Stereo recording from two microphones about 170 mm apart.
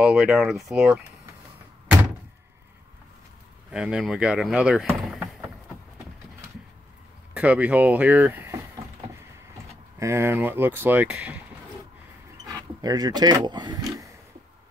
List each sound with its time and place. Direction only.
0.0 s speech: 5° right (ahead or behind)
3.7 s speech: 5° right (ahead or behind)
7.3 s speech: 10° right (ahead or behind)
9.9 s speech: 15° right (ahead or behind)
12.4 s speech: 20° right (ahead or behind)